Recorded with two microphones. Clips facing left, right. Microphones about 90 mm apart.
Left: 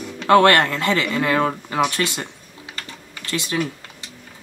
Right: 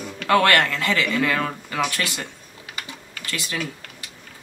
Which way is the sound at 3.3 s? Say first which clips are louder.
Left 5 dB; 25° left (ahead or behind).